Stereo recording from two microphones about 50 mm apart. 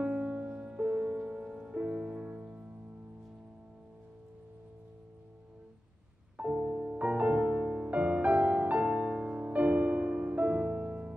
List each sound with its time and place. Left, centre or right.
0.0 s music: right
6.3 s music: right
7.0 s music: right